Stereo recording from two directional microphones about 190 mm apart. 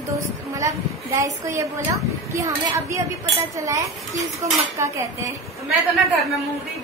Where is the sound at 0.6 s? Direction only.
15° right (ahead or behind).